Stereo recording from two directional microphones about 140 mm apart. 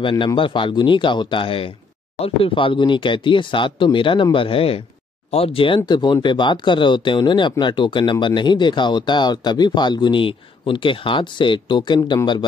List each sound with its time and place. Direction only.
0.0 s speech: 35° left (ahead or behind)